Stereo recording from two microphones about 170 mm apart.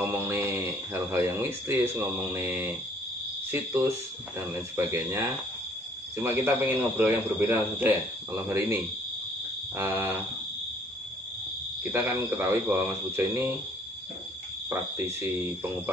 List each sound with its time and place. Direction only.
0.1 s speech: 15° right (ahead or behind)
9.8 s speech: 10° right (ahead or behind)
11.8 s speech: 15° right (ahead or behind)
14.7 s speech: 15° right (ahead or behind)